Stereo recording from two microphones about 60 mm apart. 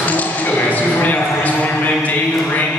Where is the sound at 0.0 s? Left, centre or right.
Left.